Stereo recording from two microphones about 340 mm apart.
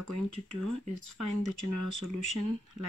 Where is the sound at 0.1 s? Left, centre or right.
Right.